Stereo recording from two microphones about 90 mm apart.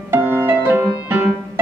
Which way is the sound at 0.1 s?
25° right (ahead or behind).